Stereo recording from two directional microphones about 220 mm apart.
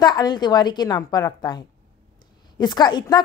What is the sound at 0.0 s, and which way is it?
A woman's voice, 20° left (ahead or behind).